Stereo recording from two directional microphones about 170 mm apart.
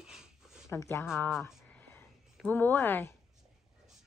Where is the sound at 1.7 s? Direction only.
10° left (ahead or behind).